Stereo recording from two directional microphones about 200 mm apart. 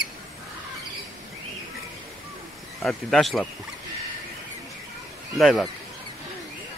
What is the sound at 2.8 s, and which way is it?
Speech, centre (ahead or behind).